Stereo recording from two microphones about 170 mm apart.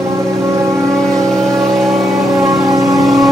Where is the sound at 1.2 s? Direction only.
Centre (ahead or behind).